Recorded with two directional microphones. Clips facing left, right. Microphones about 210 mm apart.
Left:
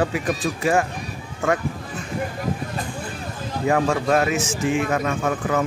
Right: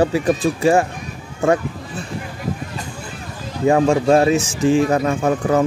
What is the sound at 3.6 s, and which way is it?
A man's voice, 25° right (ahead or behind).